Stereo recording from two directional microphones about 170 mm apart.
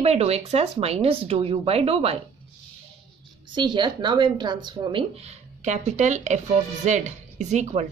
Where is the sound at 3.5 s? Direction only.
25° right (ahead or behind).